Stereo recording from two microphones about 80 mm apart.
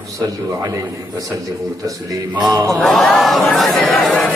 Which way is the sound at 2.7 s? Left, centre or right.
Centre.